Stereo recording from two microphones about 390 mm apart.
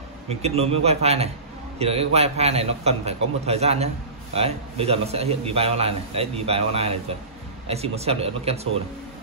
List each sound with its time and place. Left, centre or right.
0.3 s a man's voice: centre